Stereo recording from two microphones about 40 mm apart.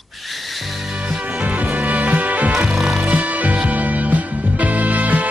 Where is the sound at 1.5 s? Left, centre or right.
Right.